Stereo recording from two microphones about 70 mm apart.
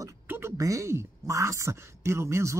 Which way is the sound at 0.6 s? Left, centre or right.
Right.